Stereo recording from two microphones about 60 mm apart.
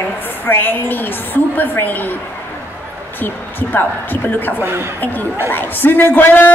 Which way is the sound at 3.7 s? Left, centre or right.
Left.